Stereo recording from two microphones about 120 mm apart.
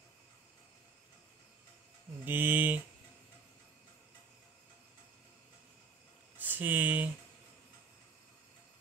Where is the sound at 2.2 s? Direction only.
15° right (ahead or behind).